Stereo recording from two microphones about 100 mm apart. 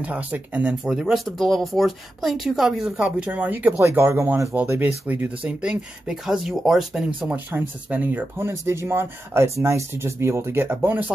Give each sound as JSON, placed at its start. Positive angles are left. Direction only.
{"t": 0.0, "sound": "speech", "side_deg": -15}
{"t": 3.8, "sound": "speech", "side_deg": -25}
{"t": 7.2, "sound": "speech", "side_deg": -15}